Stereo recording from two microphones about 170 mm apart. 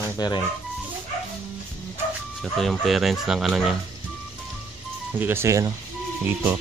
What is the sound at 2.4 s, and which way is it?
Speech, centre (ahead or behind).